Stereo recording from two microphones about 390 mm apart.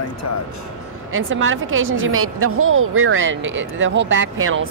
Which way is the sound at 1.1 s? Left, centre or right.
Right.